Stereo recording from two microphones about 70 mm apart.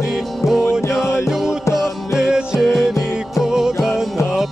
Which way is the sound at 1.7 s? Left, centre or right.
Left.